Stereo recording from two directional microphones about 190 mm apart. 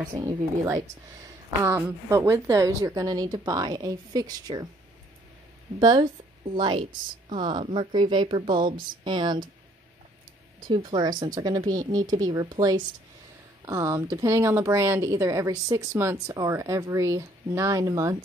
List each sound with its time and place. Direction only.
0.2 s a woman's voice: 15° right (ahead or behind)
5.8 s a woman's voice: 20° right (ahead or behind)
10.7 s a woman's voice: 25° right (ahead or behind)